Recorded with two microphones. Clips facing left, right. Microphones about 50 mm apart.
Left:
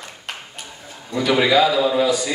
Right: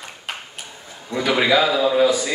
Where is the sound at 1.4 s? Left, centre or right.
Centre.